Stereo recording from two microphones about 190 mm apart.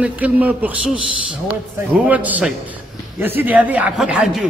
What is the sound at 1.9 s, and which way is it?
Speech, 10° right (ahead or behind).